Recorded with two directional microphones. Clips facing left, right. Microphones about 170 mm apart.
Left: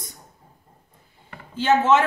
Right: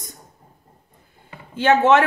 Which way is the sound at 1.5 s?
60° right (ahead or behind).